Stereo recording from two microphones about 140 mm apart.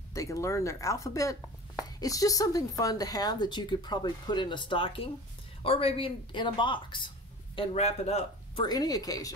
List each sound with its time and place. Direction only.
0.1 s speech: 25° left (ahead or behind)
7.5 s speech: 50° left (ahead or behind)
8.6 s speech: 25° left (ahead or behind)